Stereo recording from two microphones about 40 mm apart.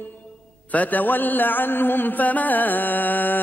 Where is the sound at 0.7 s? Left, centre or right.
Left.